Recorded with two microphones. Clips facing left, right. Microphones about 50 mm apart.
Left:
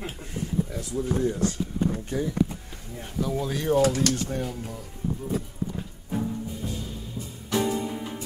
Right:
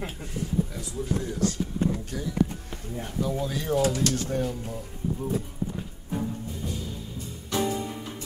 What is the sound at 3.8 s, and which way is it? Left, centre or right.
Speech, left.